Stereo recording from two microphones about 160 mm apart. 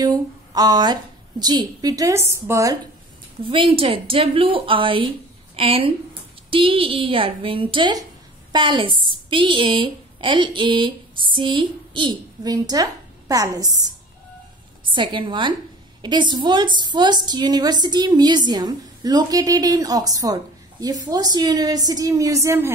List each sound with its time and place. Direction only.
0.0 s a sound: 25° right (ahead or behind)
1.4 s a woman's voice: 25° right (ahead or behind)
3.4 s a woman's voice: 35° right (ahead or behind)
15.0 s a woman's voice: 30° right (ahead or behind)